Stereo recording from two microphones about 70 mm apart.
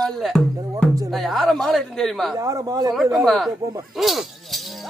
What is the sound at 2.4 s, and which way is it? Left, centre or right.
Speech, right.